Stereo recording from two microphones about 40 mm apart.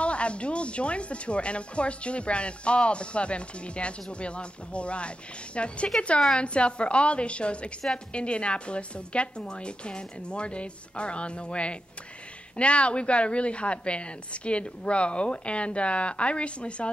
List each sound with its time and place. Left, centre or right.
0.0 s speech: left